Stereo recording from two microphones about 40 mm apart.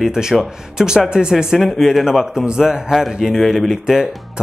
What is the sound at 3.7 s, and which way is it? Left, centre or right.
Speech, centre.